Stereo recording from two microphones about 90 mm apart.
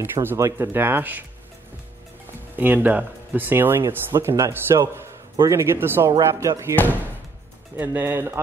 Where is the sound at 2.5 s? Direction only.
20° right (ahead or behind).